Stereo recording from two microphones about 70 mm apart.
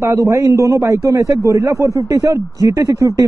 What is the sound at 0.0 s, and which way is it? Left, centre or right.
A man's voice, right.